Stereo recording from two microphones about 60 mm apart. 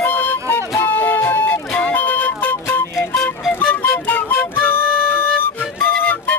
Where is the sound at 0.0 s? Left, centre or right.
Left.